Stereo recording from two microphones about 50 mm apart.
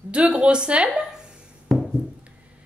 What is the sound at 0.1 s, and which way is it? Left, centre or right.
Speech, right.